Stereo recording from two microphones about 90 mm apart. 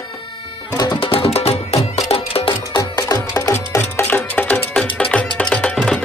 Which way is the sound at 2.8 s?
40° left (ahead or behind).